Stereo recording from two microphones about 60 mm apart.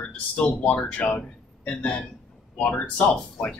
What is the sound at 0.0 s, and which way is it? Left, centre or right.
Speech, centre.